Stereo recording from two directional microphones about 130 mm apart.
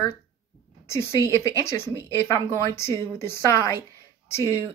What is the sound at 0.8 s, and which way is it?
Speech, 20° left (ahead or behind).